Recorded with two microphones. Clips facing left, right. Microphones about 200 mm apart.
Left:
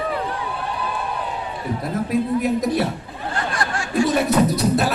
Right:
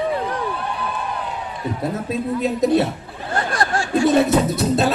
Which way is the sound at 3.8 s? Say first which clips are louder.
Right 3 dB; 25° right (ahead or behind).